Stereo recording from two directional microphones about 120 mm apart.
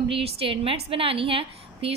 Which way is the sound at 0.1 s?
50° right (ahead or behind).